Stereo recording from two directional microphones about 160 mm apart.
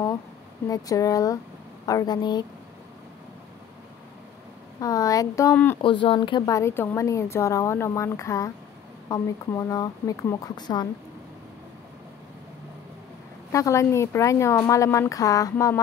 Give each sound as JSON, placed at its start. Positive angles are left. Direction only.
{"t": 0.7, "sound": "a woman's voice", "side_deg": 20}
{"t": 4.7, "sound": "a woman's voice", "side_deg": 20}
{"t": 5.8, "sound": "a woman's voice", "side_deg": 30}
{"t": 13.5, "sound": "a woman's voice", "side_deg": 20}